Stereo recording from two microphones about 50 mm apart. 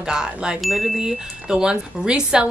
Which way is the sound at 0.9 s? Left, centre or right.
Centre.